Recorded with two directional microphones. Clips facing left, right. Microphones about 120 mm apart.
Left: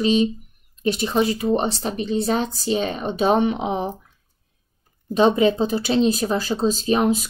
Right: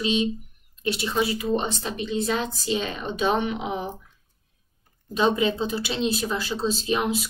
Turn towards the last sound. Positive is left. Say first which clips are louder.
# left 5 dB
turn(degrees=40)  # may be behind; listen again after turning